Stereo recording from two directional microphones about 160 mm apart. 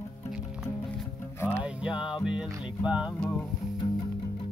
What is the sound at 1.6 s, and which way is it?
Music, 5° right (ahead or behind).